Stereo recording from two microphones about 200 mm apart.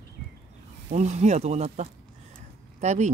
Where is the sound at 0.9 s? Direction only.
35° right (ahead or behind).